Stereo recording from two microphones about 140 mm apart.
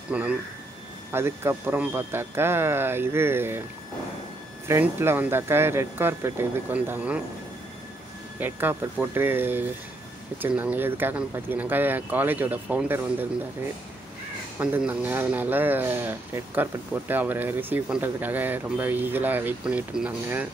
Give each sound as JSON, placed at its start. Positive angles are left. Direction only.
{"t": 0.1, "sound": "speech", "side_deg": -10}
{"t": 4.6, "sound": "speech", "side_deg": -15}
{"t": 8.4, "sound": "speech", "side_deg": -15}
{"t": 14.6, "sound": "speech", "side_deg": -10}